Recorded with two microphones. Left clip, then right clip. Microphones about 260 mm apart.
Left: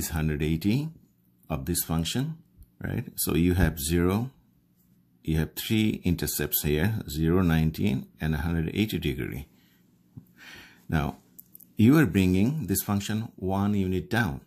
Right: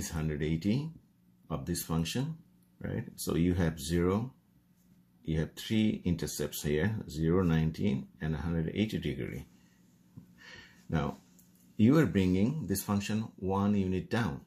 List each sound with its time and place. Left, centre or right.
0.0 s speech: left
5.2 s speech: left
10.3 s a sound: left
11.7 s speech: left